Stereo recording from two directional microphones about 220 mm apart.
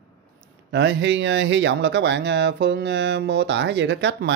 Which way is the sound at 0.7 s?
55° right (ahead or behind).